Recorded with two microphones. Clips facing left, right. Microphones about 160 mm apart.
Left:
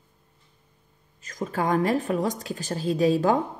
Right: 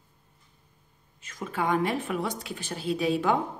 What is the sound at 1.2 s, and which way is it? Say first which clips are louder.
Speech: left 3 dB; 40° left (ahead or behind).